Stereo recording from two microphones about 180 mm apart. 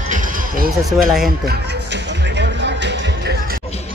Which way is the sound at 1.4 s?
65° right (ahead or behind).